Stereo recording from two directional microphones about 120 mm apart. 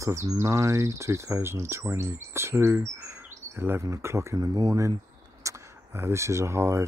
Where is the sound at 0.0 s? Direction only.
25° right (ahead or behind).